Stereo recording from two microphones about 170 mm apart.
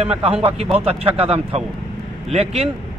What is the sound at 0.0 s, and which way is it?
A man's voice, 35° right (ahead or behind).